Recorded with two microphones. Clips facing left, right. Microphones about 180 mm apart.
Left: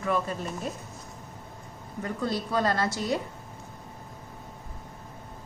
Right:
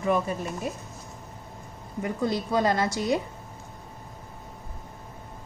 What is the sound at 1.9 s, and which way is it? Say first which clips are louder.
A woman's voice: right 3 dB; 15° right (ahead or behind).